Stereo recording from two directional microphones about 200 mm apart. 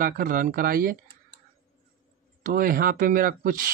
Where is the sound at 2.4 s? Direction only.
45° right (ahead or behind).